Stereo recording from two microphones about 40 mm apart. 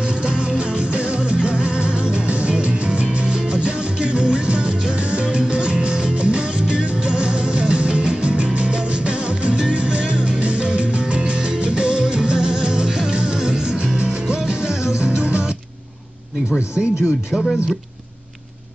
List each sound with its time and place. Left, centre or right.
0.0 s music: right
17.3 s speech: centre